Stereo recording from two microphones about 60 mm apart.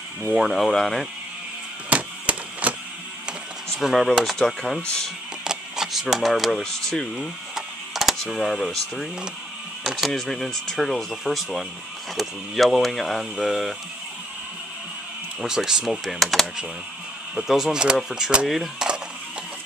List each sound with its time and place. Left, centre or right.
0.3 s speech: centre
0.7 s speech: centre
1.9 s a sound: right
3.7 s speech: centre
5.4 s a sound: centre
6.6 s speech: centre
7.2 s a sound: centre
8.4 s speech: centre
9.8 s speech: centre
15.4 s speech: centre